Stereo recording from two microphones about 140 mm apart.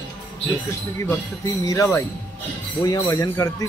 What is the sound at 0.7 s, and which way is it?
Speech, 20° left (ahead or behind).